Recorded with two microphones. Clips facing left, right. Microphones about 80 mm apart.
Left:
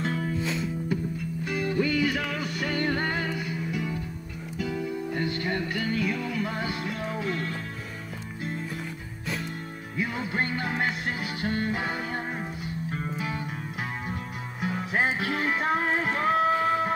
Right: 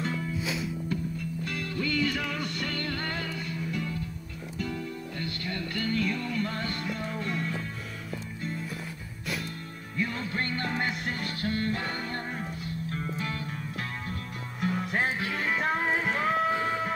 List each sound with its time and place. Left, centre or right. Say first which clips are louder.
0.1 s music: left 3 dB; left
0.4 s music: left 3 dB; centre
1.4 s music: left 8 dB; centre
2.8 s music: left 6 dB; left
5.1 s music: left 7 dB; left
5.8 s music: left 1 dB; centre
9.9 s music: left 2 dB; centre
11.4 s music: left 2 dB; centre
14.6 s music: left 1 dB; centre
15.0 s music: left 3 dB; left
15.3 s music: left 1 dB; centre